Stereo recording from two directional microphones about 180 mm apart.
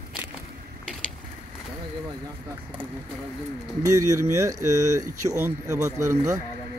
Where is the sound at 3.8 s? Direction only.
15° right (ahead or behind).